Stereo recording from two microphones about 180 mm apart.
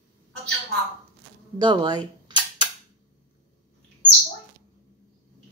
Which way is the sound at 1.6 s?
25° right (ahead or behind).